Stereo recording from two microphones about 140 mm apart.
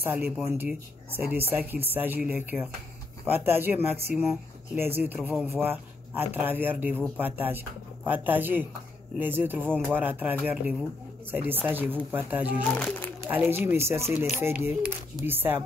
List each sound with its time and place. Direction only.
0.0 s speech: 15° right (ahead or behind)
12.6 s speech: 10° left (ahead or behind)
13.3 s speech: 15° right (ahead or behind)